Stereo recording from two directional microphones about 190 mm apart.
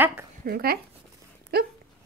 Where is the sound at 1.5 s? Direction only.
55° right (ahead or behind).